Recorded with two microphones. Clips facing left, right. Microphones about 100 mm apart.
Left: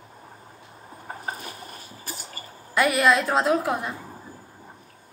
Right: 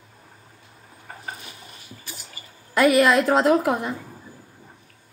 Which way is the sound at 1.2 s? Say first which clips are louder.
Left 3 dB; 45° left (ahead or behind).